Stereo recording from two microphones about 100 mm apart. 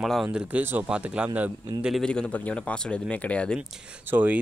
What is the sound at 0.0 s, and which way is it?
Speech, centre (ahead or behind).